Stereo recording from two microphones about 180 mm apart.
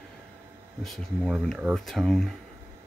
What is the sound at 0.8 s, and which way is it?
Speech, centre (ahead or behind).